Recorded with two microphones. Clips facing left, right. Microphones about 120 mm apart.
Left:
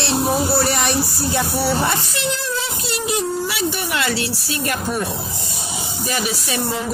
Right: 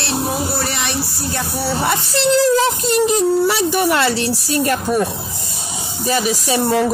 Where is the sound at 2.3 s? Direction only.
90° right.